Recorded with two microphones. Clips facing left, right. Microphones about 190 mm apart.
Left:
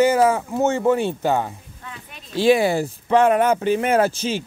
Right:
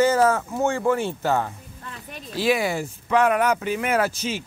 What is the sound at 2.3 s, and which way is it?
Speech, 25° left (ahead or behind).